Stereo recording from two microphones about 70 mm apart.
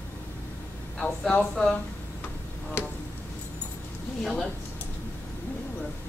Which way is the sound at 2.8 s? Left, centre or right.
Left.